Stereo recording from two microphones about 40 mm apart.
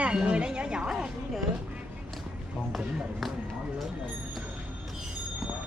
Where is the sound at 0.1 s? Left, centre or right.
Right.